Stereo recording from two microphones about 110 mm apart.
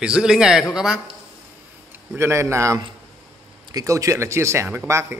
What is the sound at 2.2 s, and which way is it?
Speech, 25° right (ahead or behind).